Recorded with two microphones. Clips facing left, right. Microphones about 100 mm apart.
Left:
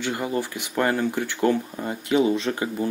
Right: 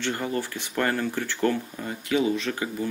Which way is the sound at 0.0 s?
10° left (ahead or behind).